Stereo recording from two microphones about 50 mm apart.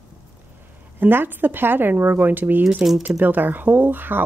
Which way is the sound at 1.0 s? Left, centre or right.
Right.